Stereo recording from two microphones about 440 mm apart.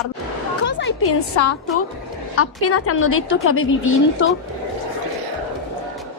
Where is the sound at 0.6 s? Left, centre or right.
Left.